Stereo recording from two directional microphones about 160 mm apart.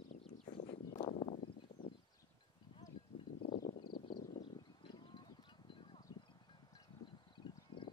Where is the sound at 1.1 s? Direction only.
45° left (ahead or behind).